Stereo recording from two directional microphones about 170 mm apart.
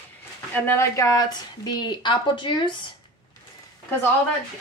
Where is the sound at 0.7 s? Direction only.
15° left (ahead or behind).